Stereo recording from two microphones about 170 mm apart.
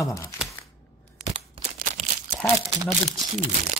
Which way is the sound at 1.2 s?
40° right (ahead or behind).